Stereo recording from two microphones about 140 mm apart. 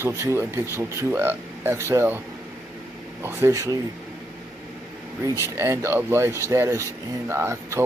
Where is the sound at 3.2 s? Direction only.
15° right (ahead or behind).